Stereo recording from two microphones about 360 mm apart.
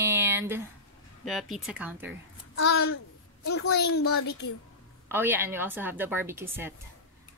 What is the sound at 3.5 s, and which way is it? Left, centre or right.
Speech, left.